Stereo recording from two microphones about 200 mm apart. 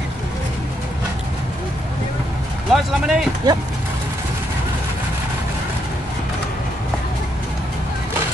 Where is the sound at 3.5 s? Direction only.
20° right (ahead or behind).